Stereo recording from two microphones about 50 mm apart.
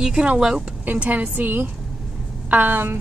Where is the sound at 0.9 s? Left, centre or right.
Right.